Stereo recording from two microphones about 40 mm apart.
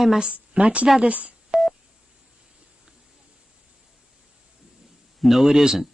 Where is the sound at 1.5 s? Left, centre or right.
Right.